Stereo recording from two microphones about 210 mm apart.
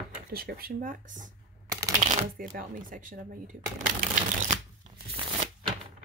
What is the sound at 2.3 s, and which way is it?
Speech, 40° right (ahead or behind).